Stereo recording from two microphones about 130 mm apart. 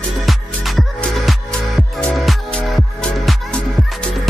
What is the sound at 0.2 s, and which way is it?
Music, centre (ahead or behind).